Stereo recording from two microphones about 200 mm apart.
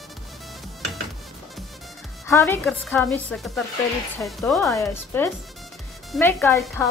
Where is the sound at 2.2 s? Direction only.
15° left (ahead or behind).